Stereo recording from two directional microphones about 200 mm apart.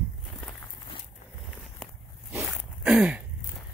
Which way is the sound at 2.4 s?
Centre (ahead or behind).